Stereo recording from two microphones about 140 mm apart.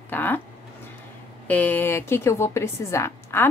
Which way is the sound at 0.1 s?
15° left (ahead or behind).